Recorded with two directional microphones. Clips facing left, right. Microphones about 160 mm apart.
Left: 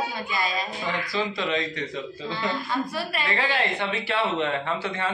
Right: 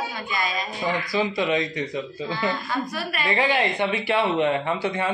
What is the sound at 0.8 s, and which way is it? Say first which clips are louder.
A man's voice: right 6 dB; 10° right (ahead or behind).